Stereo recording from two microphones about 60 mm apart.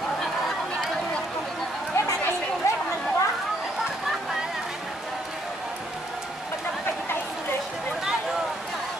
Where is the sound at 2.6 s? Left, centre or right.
Left.